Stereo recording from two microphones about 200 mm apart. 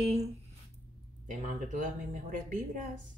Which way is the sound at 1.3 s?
40° right (ahead or behind).